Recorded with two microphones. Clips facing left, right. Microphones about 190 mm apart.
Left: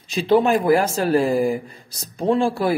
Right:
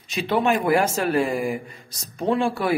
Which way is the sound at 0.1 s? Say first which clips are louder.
Left 5 dB; 30° left (ahead or behind).